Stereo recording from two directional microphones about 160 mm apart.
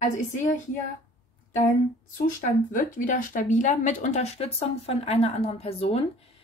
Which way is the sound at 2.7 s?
55° left (ahead or behind).